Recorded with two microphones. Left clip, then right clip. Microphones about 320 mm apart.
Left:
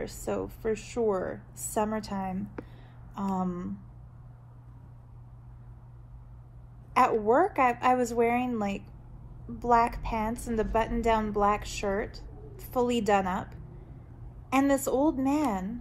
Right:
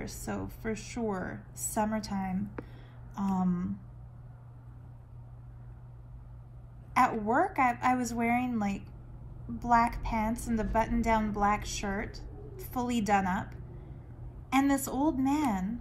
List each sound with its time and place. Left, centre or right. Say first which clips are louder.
0.5 s a woman's voice: left 6 dB; right
6.9 s a woman's voice: left 4 dB; right